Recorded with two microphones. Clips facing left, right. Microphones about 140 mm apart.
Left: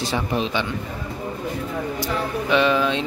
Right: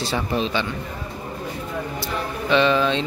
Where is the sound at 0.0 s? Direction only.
15° left (ahead or behind).